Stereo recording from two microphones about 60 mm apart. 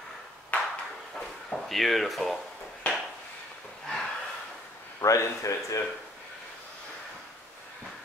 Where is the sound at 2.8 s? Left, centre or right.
Left.